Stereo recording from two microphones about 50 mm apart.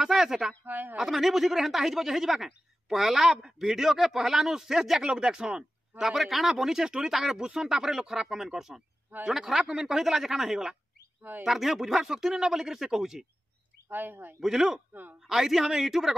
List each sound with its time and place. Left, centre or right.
0.0 s speech: centre
0.7 s speech: right
0.9 s a man's voice: centre
13.8 s speech: right
14.4 s speech: centre